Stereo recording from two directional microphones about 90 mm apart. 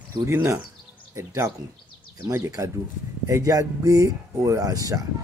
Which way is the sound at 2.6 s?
40° right (ahead or behind).